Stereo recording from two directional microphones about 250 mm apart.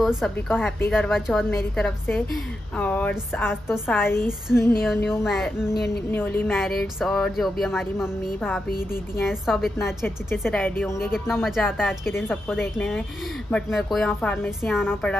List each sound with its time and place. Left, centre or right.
0.0 s a woman's voice: centre
5.3 s a woman's voice: centre